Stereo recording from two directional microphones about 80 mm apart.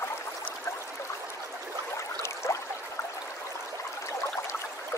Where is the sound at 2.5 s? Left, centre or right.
Left.